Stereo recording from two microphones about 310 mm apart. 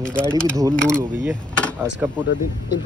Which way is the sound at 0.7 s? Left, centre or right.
Centre.